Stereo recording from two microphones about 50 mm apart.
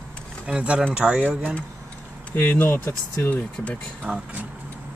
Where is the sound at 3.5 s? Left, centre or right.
Left.